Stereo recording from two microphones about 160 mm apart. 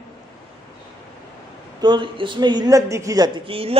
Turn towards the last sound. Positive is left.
turn(degrees=-35)  # may be behind; listen again after turning